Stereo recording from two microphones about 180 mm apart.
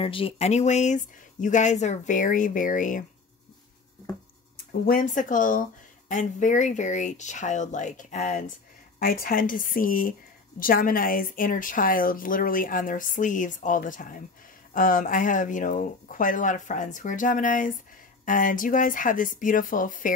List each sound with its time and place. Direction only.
0.0 s speech: 30° left (ahead or behind); by 3.1 s 45° left (ahead or behind)
4.8 s speech: 50° left (ahead or behind)